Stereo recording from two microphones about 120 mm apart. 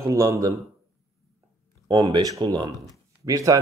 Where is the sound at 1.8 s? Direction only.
35° right (ahead or behind).